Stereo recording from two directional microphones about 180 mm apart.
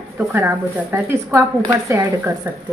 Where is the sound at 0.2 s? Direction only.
10° right (ahead or behind).